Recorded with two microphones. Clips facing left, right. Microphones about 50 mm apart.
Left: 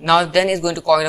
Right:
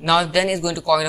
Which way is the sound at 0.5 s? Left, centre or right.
Left.